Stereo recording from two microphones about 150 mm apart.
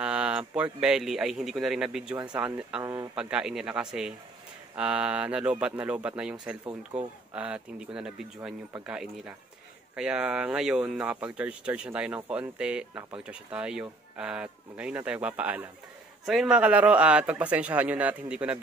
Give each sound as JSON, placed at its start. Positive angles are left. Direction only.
{"t": 0.0, "sound": "speech", "side_deg": -5}
{"t": 2.1, "sound": "speech", "side_deg": -30}
{"t": 3.2, "sound": "a man's voice", "side_deg": -5}
{"t": 6.6, "sound": "speech", "side_deg": -30}
{"t": 7.3, "sound": "speech", "side_deg": -5}